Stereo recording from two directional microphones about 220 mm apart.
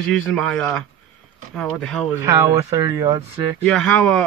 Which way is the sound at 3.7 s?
5° left (ahead or behind).